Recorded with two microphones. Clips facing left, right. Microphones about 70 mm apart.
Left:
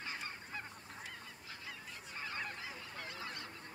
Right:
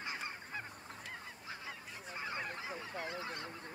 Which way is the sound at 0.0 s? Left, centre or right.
Centre.